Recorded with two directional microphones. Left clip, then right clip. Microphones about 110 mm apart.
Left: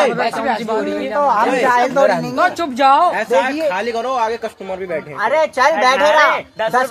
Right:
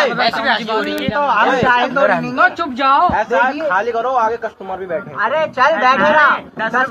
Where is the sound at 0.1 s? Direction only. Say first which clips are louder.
Right 2 dB; 30° left (ahead or behind).